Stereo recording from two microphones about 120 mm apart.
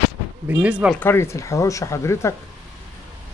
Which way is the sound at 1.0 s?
20° left (ahead or behind).